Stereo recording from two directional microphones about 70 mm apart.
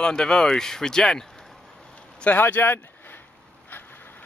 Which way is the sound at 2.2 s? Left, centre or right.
Left.